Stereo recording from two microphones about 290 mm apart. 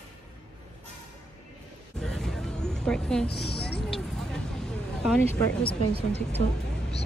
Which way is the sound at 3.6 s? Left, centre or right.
Left.